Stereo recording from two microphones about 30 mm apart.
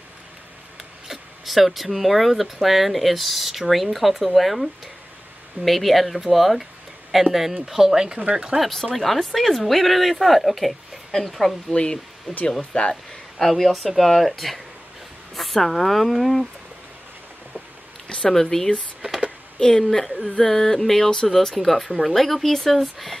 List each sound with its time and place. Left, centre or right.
1.0 s speech: centre
8.1 s speech: right
8.5 s speech: centre
9.2 s a sound: centre
9.7 s speech: centre
11.7 s speech: left
13.4 s speech: centre
18.0 s a sound: left
18.3 s a sound: centre
19.8 s speech: centre
20.4 s a sound: centre
21.6 s speech: centre